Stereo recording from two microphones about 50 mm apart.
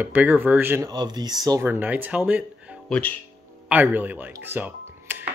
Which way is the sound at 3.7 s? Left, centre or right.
Right.